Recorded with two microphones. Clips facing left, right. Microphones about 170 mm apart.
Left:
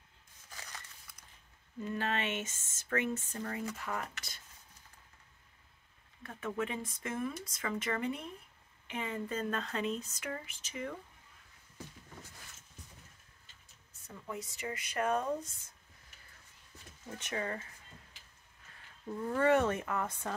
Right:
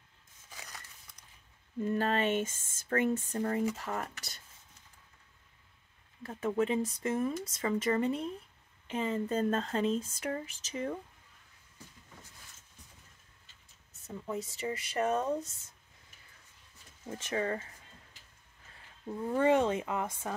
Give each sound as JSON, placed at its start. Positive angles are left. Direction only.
{"t": 0.5, "sound": "a sound", "side_deg": -5}
{"t": 1.9, "sound": "speech", "side_deg": -40}
{"t": 6.2, "sound": "speech", "side_deg": -30}
{"t": 14.0, "sound": "speech", "side_deg": -25}
{"t": 17.2, "sound": "speech", "side_deg": -30}
{"t": 19.0, "sound": "speech", "side_deg": -20}